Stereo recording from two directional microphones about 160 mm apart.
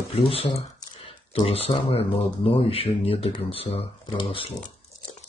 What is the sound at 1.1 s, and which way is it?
Speech, 35° left (ahead or behind).